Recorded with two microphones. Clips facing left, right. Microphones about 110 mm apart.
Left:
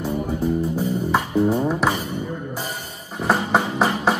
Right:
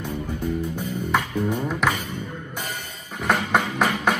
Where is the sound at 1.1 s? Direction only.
30° left (ahead or behind).